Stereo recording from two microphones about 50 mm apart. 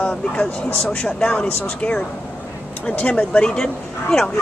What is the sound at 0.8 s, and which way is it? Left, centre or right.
Speech, centre.